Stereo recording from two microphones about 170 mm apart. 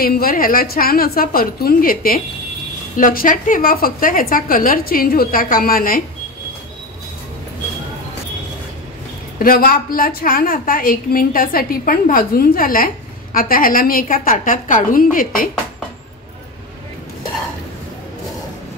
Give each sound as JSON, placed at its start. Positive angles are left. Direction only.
{"t": 0.0, "sound": "a woman's voice", "side_deg": 60}
{"t": 9.4, "sound": "a woman's voice", "side_deg": 60}